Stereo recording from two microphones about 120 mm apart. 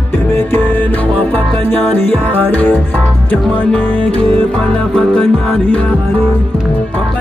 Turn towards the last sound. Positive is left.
turn(degrees=5)  # may be behind; listen again after turning